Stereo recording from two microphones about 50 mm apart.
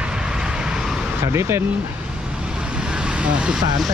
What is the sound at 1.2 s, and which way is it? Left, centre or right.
Speech, right.